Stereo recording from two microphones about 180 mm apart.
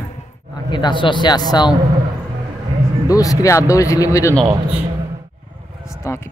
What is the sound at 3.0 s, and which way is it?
Speech, 20° left (ahead or behind).